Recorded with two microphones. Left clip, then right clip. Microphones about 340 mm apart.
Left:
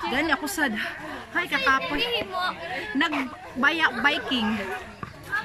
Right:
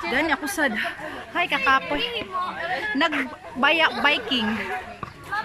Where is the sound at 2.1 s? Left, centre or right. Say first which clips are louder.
Left 1 dB; left.